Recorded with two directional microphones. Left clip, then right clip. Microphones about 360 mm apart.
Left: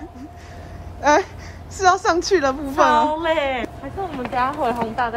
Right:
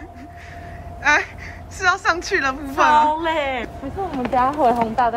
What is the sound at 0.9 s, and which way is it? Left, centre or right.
Babbling, centre.